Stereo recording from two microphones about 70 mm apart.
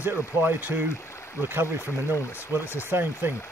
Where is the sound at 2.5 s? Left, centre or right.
Right.